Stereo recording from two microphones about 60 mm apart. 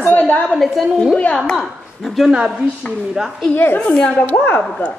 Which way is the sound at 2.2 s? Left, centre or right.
Centre.